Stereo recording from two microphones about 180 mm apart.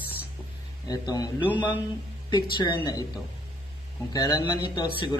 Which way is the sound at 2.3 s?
25° left (ahead or behind).